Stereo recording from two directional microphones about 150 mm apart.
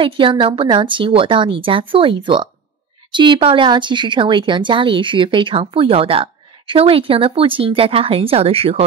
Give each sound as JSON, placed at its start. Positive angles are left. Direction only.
{"t": 0.0, "sound": "speech", "side_deg": -35}